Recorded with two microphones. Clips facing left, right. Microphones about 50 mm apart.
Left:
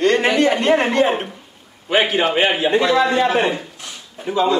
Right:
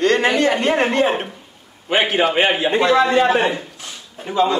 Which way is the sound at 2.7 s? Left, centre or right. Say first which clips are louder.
Even; right.